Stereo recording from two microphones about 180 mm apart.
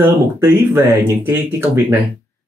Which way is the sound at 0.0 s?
10° right (ahead or behind).